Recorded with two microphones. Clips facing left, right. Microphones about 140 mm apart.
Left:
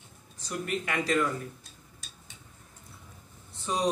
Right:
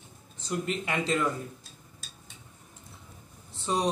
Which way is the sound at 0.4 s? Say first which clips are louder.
Right 2 dB; 25° right (ahead or behind).